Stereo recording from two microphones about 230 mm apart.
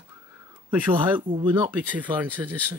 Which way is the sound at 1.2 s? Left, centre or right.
Right.